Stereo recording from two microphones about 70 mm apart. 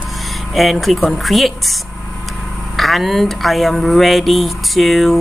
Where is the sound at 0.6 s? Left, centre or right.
Centre.